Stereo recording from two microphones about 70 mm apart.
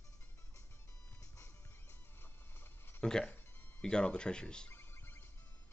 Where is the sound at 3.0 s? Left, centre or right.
Centre.